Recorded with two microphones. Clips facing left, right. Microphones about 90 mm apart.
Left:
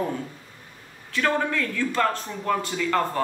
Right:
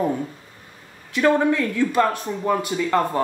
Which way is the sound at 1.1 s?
20° right (ahead or behind).